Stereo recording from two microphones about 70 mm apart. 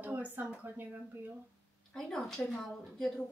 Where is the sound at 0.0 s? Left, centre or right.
Right.